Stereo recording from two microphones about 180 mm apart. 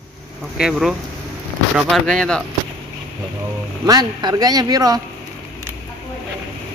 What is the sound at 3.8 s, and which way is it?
Speech, 20° right (ahead or behind).